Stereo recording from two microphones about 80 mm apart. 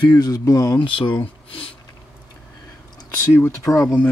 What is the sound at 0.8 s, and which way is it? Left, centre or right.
Speech, left.